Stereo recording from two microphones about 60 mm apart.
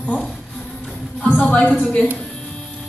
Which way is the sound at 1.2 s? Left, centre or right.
Left.